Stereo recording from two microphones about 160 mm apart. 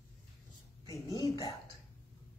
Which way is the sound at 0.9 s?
25° left (ahead or behind).